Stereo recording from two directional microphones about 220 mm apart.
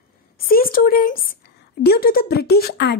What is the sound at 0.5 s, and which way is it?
Speech, 40° left (ahead or behind).